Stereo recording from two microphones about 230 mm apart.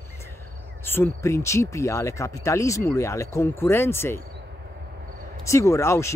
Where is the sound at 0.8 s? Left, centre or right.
Centre.